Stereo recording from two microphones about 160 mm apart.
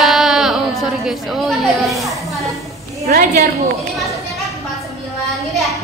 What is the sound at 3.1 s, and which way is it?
Speech, 65° right (ahead or behind).